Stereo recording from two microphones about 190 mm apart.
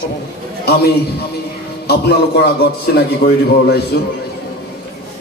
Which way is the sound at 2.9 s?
55° left (ahead or behind).